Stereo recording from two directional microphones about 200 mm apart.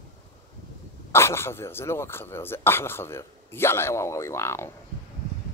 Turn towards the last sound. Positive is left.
turn(degrees=15)  # may be behind; listen again after turning